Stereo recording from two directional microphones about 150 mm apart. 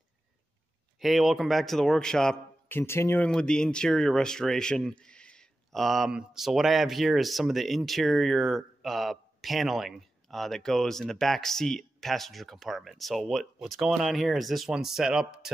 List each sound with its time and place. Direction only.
0.9 s speech: centre (ahead or behind)
2.7 s speech: 15° left (ahead or behind)
3.3 s speech: 5° left (ahead or behind)